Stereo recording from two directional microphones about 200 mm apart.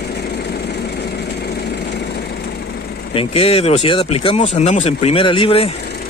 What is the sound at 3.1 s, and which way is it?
Speech, 30° left (ahead or behind).